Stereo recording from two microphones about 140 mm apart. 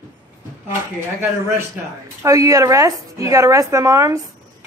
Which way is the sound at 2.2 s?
25° right (ahead or behind).